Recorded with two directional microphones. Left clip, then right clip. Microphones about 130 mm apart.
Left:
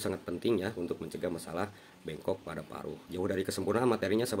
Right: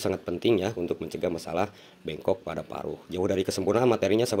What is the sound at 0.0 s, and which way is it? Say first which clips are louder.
Speech: right 7 dB; 25° right (ahead or behind).